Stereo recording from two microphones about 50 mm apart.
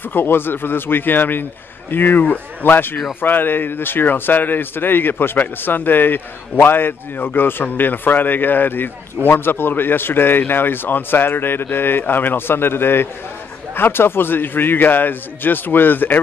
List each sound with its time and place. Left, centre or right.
0.1 s speech: left